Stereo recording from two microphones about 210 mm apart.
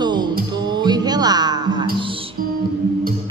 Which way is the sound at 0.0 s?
20° right (ahead or behind).